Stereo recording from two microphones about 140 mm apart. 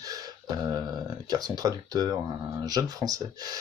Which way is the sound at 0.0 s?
30° right (ahead or behind).